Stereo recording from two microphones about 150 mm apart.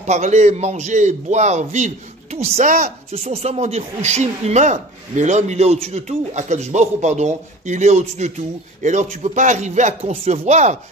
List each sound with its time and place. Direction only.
0.0 s speech: 50° right (ahead or behind)